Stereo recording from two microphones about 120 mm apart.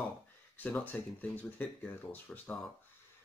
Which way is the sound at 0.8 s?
15° left (ahead or behind).